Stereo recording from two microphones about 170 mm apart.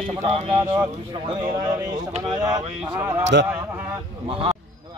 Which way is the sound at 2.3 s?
20° right (ahead or behind).